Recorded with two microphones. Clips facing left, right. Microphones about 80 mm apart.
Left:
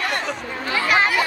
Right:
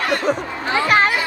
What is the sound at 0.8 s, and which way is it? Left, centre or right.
Chatter, right.